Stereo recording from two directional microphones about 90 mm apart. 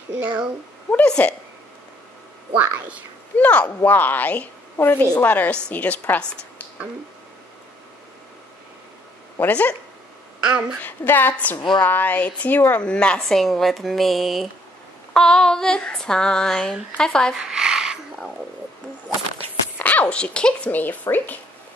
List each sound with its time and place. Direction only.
0.2 s speech: 20° right (ahead or behind)
0.9 s a woman's voice: 15° left (ahead or behind)
2.5 s speech: 20° right (ahead or behind)
3.3 s a woman's voice: 15° left (ahead or behind)
9.4 s a woman's voice: 15° left (ahead or behind)
10.4 s speech: 10° right (ahead or behind)
10.8 s a woman's voice: 20° left (ahead or behind)
11.5 s a woman's voice: 60° left (ahead or behind)
11.8 s a woman's voice: 20° left (ahead or behind)
17.4 s a sound: 5° right (ahead or behind)
19.8 s a woman's voice: 15° left (ahead or behind)